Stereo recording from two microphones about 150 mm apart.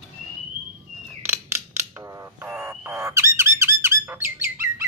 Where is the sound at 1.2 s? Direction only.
15° right (ahead or behind).